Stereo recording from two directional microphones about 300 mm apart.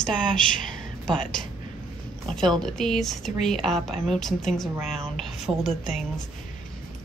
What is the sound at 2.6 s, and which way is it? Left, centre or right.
A woman's voice, centre.